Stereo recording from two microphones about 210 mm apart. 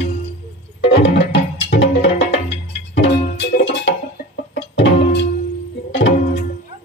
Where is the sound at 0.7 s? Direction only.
55° left (ahead or behind).